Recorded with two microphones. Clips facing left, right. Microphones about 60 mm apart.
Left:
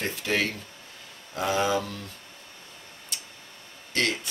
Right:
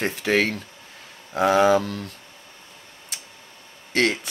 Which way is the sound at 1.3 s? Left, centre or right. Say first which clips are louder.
Right 8 dB; right.